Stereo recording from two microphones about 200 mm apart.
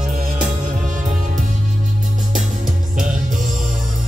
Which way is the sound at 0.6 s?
40° right (ahead or behind).